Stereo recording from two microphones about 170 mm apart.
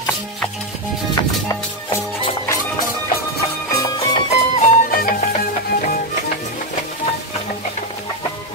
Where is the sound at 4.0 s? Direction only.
35° left (ahead or behind).